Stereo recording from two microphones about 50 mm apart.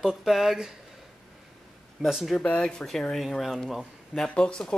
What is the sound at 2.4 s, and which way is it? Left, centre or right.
Speech, left.